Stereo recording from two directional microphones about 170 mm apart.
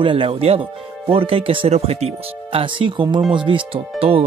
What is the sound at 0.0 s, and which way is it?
Speech, 30° right (ahead or behind).